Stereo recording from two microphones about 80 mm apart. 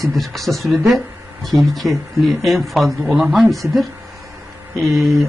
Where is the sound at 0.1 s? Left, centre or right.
Centre.